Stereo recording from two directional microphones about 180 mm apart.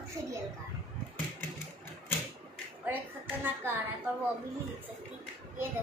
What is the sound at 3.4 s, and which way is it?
Speech, 10° right (ahead or behind).